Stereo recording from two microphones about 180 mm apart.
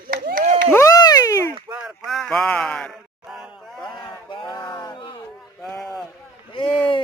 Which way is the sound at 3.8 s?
25° left (ahead or behind).